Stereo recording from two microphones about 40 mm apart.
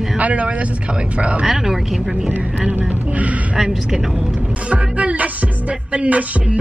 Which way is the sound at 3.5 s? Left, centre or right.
Centre.